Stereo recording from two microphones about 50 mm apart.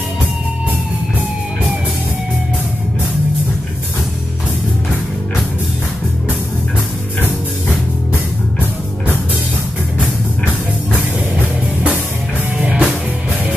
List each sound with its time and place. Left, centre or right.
12.5 s music: right